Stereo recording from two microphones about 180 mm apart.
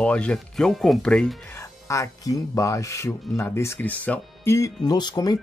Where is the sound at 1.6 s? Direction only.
15° left (ahead or behind).